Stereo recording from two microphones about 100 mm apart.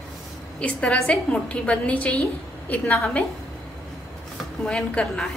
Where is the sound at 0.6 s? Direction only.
10° left (ahead or behind).